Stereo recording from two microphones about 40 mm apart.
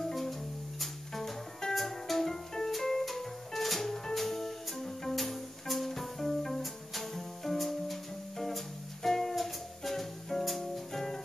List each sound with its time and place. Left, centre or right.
0.0 s music: centre